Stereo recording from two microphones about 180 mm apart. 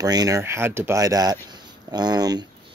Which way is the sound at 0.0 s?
20° right (ahead or behind).